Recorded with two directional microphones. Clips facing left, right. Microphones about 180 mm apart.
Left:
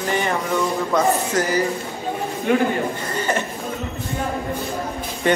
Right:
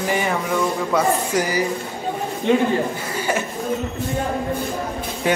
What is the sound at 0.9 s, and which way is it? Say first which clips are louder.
Speech: left 1 dB; 10° right (ahead or behind).